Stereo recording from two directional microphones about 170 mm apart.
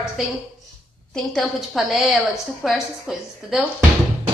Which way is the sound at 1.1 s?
Centre (ahead or behind).